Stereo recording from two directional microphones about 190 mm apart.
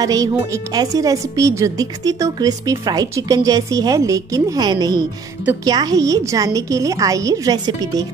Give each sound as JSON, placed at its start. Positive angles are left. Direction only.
{"t": 0.0, "sound": "speech", "side_deg": -20}